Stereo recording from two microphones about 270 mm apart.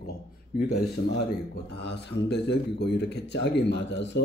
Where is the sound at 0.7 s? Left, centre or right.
Left.